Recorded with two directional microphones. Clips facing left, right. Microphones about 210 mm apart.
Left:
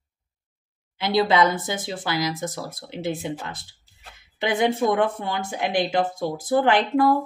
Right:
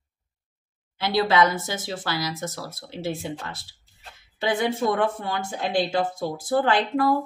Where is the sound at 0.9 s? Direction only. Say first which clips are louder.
Left 1 dB; 20° left (ahead or behind).